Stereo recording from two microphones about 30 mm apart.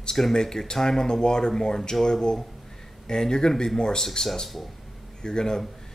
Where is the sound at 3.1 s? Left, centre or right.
Centre.